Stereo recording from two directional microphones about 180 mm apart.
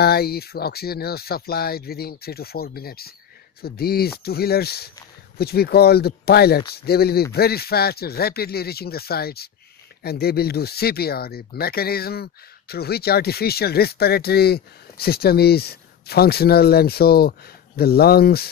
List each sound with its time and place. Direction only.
0.0 s speech: 60° left (ahead or behind)